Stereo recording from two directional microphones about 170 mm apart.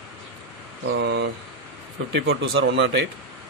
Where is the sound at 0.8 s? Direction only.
85° right.